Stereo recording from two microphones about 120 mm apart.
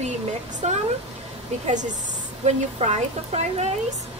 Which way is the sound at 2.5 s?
70° right (ahead or behind).